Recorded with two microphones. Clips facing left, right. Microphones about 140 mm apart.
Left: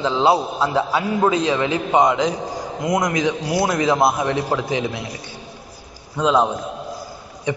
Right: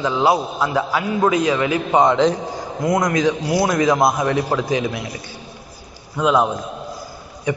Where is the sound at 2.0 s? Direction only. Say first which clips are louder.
Right 3 dB; 10° left (ahead or behind).